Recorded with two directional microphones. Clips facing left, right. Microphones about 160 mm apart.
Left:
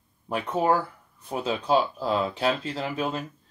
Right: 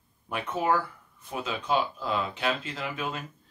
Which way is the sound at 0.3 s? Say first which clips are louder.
Left 3 dB; 35° left (ahead or behind).